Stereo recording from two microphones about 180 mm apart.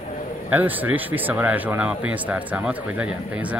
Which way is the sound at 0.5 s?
10° right (ahead or behind).